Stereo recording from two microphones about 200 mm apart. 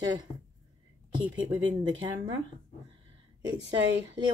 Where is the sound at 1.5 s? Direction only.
25° right (ahead or behind).